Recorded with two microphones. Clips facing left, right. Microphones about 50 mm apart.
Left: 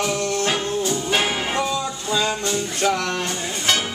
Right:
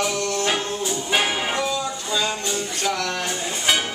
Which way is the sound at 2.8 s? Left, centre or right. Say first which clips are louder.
Left 4 dB; centre.